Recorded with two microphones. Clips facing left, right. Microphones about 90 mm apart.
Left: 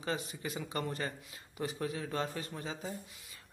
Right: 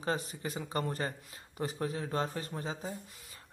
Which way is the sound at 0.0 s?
40° right (ahead or behind).